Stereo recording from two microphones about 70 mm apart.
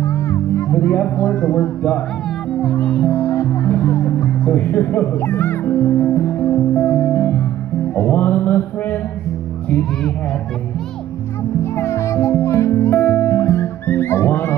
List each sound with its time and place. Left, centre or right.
0.0 s music: left
0.7 s a child's voice: left
1.1 s speech: left
1.6 s a child's voice: left
3.1 s music: left
4.6 s a child's voice: left
6.7 s music: left
7.9 s a child's voice: left
11.6 s music: left
12.9 s music: left